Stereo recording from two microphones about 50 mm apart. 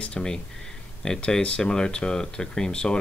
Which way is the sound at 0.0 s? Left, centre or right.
Centre.